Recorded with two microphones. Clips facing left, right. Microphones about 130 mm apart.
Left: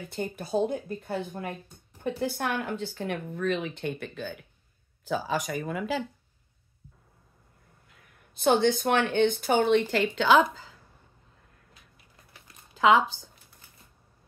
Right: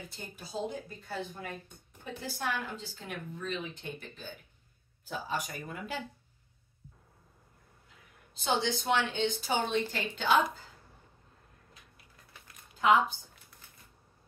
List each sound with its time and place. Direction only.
0.1 s speech: 60° left (ahead or behind); by 6.0 s 90° left
8.4 s speech: 55° left (ahead or behind); by 10.7 s 90° left
12.7 s speech: 90° left